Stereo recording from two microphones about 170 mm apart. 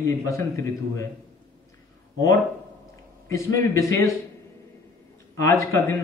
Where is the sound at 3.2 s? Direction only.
15° left (ahead or behind).